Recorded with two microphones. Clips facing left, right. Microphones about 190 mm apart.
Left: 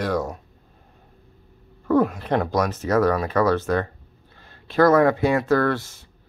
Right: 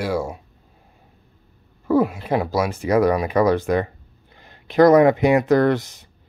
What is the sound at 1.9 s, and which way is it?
Speech, 10° right (ahead or behind).